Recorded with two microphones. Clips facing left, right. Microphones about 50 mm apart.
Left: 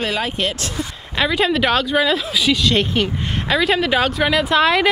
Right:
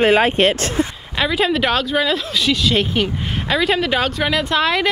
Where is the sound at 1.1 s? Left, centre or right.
Centre.